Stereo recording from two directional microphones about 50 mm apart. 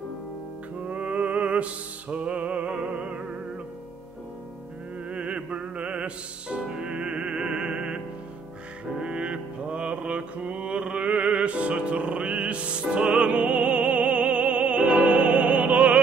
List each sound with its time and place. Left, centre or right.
0.8 s music: right
5.1 s music: right
12.9 s opera: right